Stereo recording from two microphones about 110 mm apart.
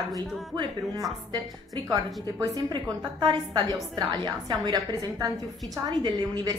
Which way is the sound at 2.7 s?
40° right (ahead or behind).